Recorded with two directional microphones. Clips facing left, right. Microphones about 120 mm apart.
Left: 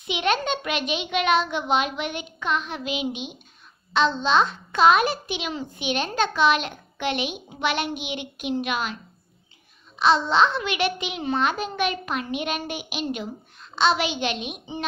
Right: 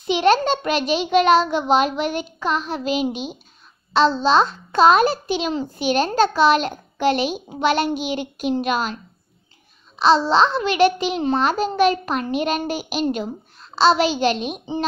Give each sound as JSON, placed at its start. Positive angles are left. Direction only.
{"t": 0.0, "sound": "a child's voice", "side_deg": -35}
{"t": 9.9, "sound": "a child's voice", "side_deg": -30}